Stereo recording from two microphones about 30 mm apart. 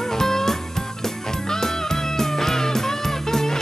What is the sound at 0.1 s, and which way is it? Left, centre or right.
Music, centre.